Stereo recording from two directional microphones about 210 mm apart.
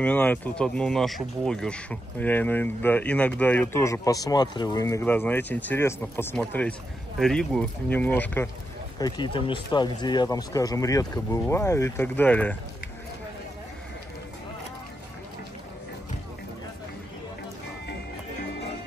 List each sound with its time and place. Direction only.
0.0 s speech: 5° left (ahead or behind)
9.0 s speech: 20° left (ahead or behind)